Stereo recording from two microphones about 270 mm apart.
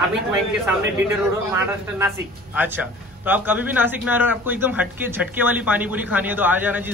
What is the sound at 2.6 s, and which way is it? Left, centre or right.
A man's voice, centre.